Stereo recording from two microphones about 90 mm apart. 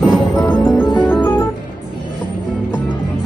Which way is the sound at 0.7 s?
20° left (ahead or behind).